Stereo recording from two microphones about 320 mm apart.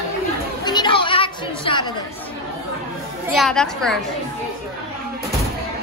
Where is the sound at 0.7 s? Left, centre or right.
Centre.